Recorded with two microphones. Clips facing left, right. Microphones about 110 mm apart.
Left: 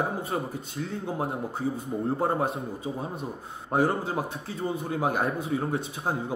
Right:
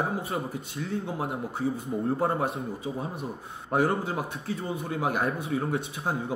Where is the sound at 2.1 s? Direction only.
30° left (ahead or behind).